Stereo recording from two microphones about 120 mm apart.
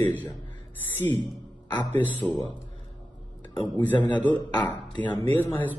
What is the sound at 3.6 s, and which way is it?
A man's voice, 15° left (ahead or behind).